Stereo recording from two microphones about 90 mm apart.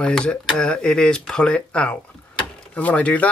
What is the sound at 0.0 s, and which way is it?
Speech, 10° left (ahead or behind).